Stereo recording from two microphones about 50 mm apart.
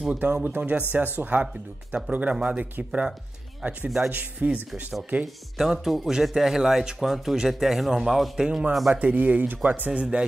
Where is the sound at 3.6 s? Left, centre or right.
Right.